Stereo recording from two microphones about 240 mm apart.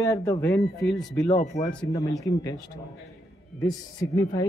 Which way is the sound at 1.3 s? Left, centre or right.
Left.